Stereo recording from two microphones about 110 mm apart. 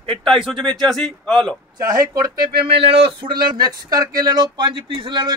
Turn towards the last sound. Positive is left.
turn(degrees=-45)  # may be behind; listen again after turning